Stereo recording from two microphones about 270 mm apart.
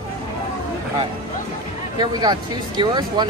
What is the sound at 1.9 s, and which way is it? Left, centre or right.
Speech, centre.